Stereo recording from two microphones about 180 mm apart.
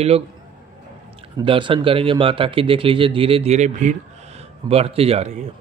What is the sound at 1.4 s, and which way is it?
A man's voice, 30° right (ahead or behind).